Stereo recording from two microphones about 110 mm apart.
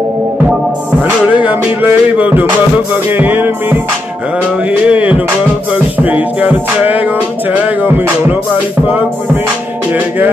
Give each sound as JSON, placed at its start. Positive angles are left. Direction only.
{"t": 1.0, "sound": "music", "side_deg": -15}
{"t": 4.8, "sound": "music", "side_deg": -10}
{"t": 9.9, "sound": "music", "side_deg": -15}